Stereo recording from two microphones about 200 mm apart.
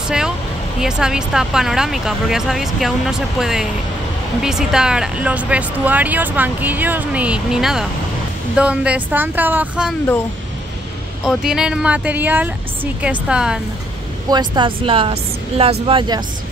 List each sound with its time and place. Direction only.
0.7 s speech: 5° right (ahead or behind)
11.2 s speech: 5° right (ahead or behind)
14.3 s speech: 20° right (ahead or behind)